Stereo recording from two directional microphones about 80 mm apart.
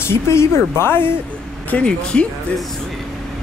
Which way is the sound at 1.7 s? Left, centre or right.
Centre.